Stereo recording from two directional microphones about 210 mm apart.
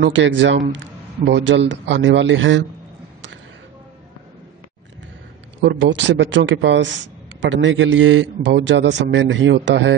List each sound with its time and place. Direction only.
0.0 s a man's voice: 60° right (ahead or behind)
5.6 s a man's voice: 60° right (ahead or behind)